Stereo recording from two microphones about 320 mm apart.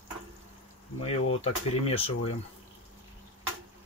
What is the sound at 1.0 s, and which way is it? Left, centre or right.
Speech, centre.